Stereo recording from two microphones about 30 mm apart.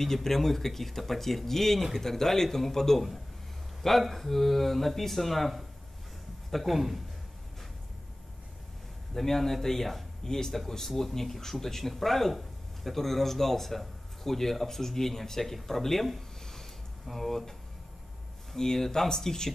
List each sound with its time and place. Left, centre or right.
0.0 s speech: centre
4.1 s speech: centre
6.7 s a man's voice: centre
9.1 s speech: centre
16.2 s a sound: centre
17.0 s speech: centre
18.6 s speech: centre